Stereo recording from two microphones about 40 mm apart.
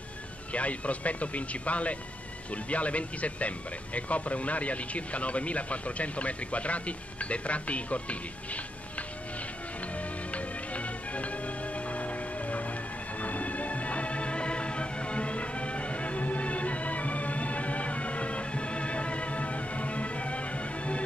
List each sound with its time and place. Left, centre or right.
0.5 s speech: left
9.9 s music: left